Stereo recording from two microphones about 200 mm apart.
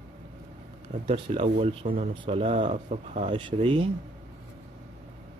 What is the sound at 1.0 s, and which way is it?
Speech, 30° right (ahead or behind).